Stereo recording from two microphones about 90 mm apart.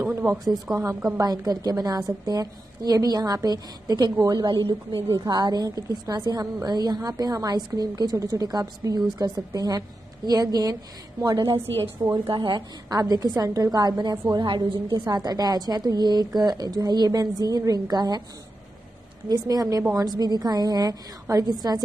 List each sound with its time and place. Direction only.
0.7 s a woman's voice: 10° right (ahead or behind)
1.2 s a woman's voice: 45° right (ahead or behind)
4.5 s speech: 60° right (ahead or behind)
5.1 s a woman's voice: 45° right (ahead or behind)
12.0 s a woman's voice: 55° right (ahead or behind)
19.2 s a woman's voice: 45° right (ahead or behind)